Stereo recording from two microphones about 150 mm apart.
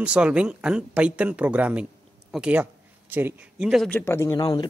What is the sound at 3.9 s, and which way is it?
Speech, 15° left (ahead or behind).